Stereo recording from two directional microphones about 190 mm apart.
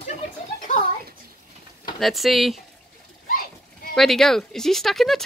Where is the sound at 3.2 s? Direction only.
50° left (ahead or behind).